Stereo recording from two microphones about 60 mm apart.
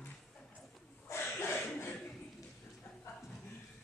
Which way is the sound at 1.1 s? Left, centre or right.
Left.